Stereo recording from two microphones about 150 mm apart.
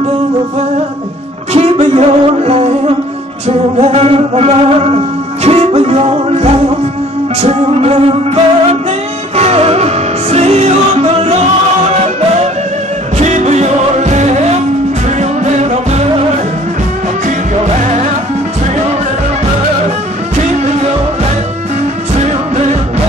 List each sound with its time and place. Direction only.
1.5 s music: 45° right (ahead or behind)
13.2 s music: 50° right (ahead or behind)
22.1 s music: 45° right (ahead or behind)